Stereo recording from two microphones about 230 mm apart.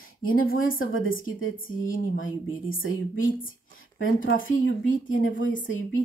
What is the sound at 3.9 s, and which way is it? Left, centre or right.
Speech, left.